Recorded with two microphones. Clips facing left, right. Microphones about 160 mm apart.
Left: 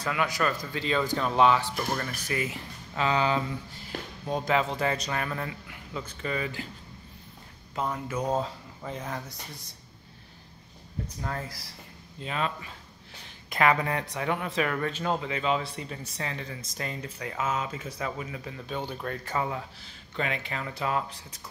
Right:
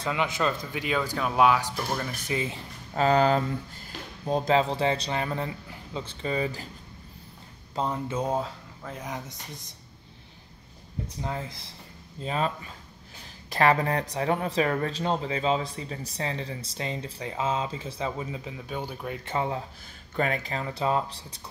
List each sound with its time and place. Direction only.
0.0 s speech: 25° right (ahead or behind)
2.2 s speech: 25° right (ahead or behind); by 3.9 s 45° right (ahead or behind)
4.3 s speech: 30° right (ahead or behind)
7.7 s speech: 30° right (ahead or behind)
8.4 s speech: centre (ahead or behind)
11.1 s speech: 20° right (ahead or behind)
12.2 s speech: 35° right (ahead or behind); by 18.6 s 20° right (ahead or behind)
18.6 s speech: 10° right (ahead or behind)
19.2 s speech: 30° right (ahead or behind)
20.2 s speech: 40° right (ahead or behind)